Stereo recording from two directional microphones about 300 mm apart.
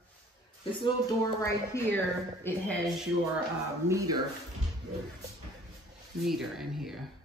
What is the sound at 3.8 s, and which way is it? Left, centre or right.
Speech, centre.